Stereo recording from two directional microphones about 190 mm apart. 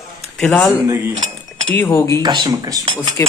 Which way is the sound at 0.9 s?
15° right (ahead or behind).